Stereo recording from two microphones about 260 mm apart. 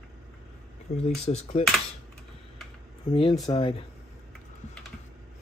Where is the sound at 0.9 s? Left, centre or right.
Left.